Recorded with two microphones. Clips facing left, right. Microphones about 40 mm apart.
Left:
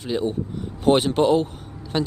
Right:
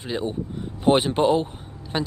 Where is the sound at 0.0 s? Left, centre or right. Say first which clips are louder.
Left 3 dB; centre.